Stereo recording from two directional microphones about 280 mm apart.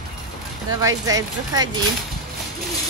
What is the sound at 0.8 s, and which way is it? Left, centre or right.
Speech, centre.